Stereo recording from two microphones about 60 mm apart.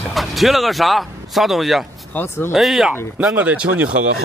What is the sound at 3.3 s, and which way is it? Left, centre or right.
Speech, right.